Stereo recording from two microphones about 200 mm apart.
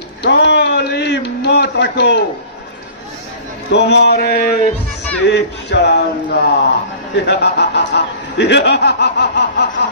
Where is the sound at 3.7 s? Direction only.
60° left (ahead or behind).